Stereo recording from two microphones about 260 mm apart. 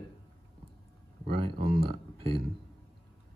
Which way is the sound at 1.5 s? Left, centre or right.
Right.